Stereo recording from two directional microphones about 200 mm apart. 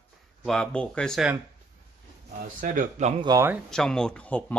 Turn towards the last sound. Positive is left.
turn(degrees=5)  # may be behind; listen again after turning